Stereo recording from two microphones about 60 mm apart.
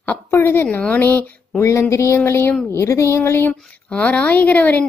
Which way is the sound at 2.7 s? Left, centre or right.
Left.